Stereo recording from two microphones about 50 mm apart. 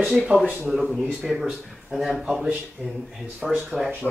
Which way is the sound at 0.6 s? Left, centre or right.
Centre.